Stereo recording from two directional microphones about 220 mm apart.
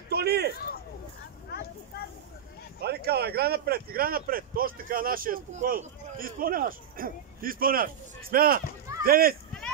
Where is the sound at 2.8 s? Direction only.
45° right (ahead or behind).